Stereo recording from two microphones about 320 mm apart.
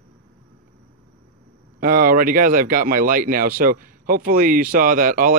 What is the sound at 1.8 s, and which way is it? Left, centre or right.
Speech, right.